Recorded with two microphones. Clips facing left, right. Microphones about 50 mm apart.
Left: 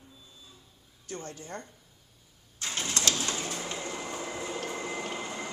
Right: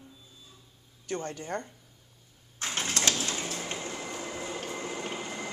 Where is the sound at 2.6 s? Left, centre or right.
Right.